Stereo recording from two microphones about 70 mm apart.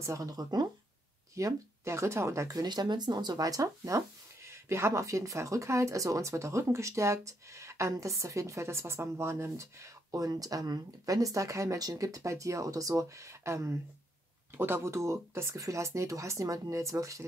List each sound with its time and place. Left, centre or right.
0.0 s speech: right
0.3 s speech: right
1.3 s speech: right
2.5 s speech: right
14.5 s speech: right